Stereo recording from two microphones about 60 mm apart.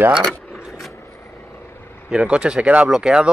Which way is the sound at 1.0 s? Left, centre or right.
Left.